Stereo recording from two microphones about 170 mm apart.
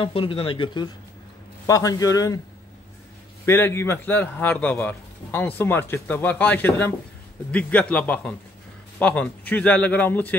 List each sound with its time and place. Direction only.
0.0 s a man's voice: 30° left (ahead or behind)
3.4 s a man's voice: 15° left (ahead or behind)